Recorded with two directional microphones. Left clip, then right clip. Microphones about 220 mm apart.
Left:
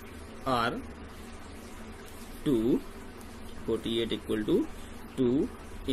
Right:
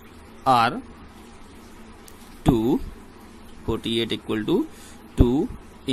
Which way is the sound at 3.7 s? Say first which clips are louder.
Right 5 dB; 40° right (ahead or behind).